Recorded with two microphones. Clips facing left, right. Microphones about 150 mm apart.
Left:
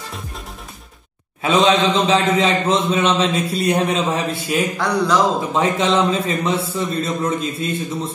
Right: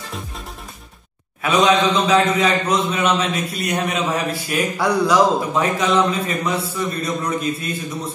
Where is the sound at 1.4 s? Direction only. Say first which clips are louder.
Left 1 dB; 25° left (ahead or behind).